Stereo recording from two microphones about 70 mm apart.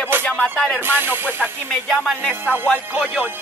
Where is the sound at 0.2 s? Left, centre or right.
Centre.